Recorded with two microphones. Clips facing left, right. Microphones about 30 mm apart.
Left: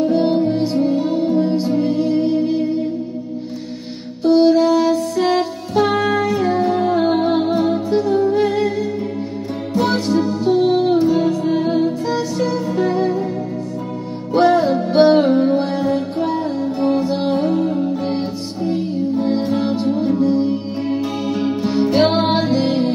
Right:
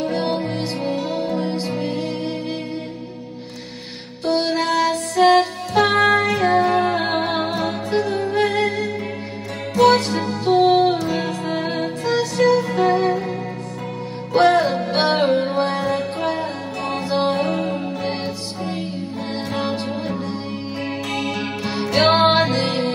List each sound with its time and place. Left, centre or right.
0.0 s music: right
4.2 s music: right
5.9 s music: right
7.5 s music: right
14.3 s music: right
19.7 s music: right
21.8 s music: right
22.1 s music: right